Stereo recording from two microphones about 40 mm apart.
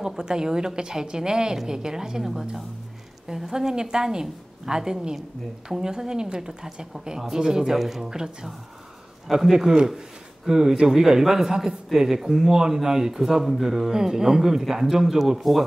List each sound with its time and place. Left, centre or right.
0.0 s speech: centre
3.5 s speech: centre